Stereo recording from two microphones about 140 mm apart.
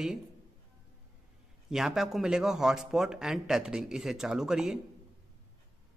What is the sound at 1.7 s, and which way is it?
A man's voice, centre (ahead or behind).